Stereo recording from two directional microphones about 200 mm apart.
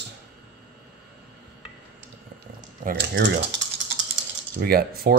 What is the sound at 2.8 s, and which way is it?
Speech, 60° right (ahead or behind).